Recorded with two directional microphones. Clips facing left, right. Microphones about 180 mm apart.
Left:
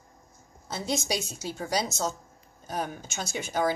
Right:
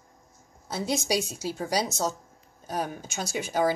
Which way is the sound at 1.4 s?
5° right (ahead or behind).